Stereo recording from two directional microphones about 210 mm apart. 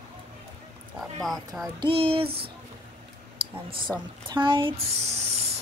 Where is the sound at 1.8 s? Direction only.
25° right (ahead or behind).